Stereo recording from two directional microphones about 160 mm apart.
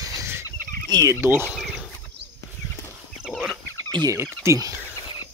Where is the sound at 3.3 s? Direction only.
Centre (ahead or behind).